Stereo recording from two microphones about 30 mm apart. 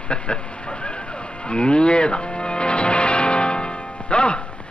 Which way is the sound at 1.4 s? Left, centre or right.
Left.